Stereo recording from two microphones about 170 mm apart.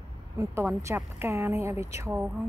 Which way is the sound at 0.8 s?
15° right (ahead or behind).